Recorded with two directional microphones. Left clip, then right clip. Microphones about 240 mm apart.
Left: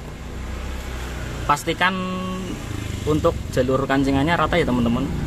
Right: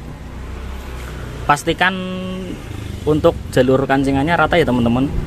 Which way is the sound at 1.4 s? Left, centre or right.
Centre.